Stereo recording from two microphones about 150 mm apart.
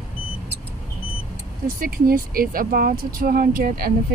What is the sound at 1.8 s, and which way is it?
Speech, 75° right (ahead or behind).